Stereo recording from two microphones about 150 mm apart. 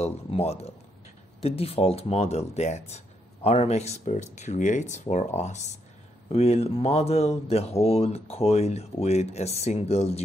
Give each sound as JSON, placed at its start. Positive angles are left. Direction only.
{"t": 0.0, "sound": "speech", "side_deg": 45}